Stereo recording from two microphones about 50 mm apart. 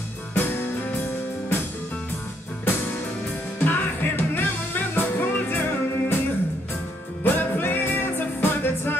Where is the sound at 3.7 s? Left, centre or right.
Left.